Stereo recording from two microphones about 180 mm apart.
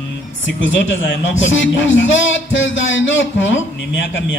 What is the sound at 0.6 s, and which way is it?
A man's voice, 90° left.